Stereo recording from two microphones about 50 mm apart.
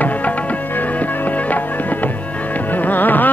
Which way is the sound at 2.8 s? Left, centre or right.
Left.